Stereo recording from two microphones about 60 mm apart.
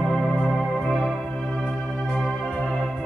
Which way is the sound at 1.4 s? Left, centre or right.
Centre.